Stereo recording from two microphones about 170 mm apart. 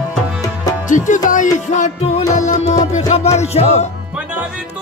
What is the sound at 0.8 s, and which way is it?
Music, 50° left (ahead or behind).